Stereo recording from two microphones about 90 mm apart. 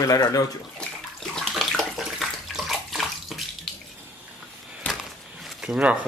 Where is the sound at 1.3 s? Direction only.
5° left (ahead or behind).